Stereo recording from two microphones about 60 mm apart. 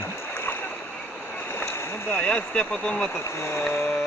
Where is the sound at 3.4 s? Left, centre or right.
Left.